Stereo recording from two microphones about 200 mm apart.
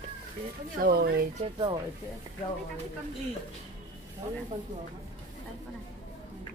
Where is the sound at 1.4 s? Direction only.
25° right (ahead or behind).